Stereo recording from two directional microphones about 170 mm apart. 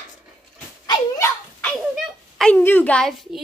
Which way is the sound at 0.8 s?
25° left (ahead or behind).